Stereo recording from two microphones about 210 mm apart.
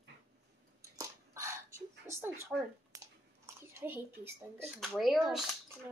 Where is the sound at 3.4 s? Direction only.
10° right (ahead or behind).